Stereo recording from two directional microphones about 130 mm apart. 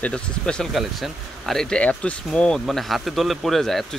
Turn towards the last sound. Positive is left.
turn(degrees=0)  # may be behind; listen again after turning